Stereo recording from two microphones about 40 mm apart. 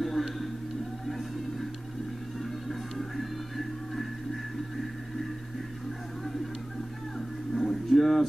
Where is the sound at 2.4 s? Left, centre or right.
Centre.